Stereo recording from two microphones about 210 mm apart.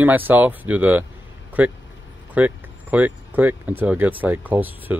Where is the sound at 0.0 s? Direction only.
10° right (ahead or behind).